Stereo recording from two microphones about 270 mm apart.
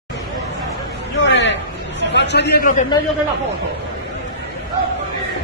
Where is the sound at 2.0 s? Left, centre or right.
Left.